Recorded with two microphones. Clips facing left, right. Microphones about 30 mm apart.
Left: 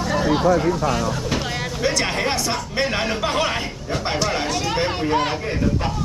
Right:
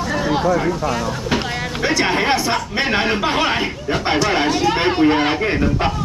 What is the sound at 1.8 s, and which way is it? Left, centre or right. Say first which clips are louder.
A man's voice: right 5 dB; right.